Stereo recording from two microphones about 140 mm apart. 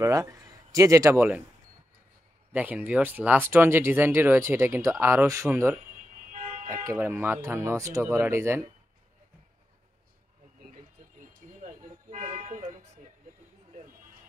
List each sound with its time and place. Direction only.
0.0 s speech: 25° right (ahead or behind)
2.5 s speech: 10° right (ahead or behind)
6.3 s toot: 65° right (ahead or behind)
6.9 s speech: 15° right (ahead or behind)
12.1 s toot: 60° right (ahead or behind)